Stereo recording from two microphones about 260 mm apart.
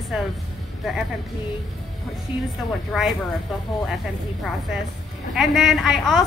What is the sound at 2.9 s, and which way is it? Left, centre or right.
Speech, centre.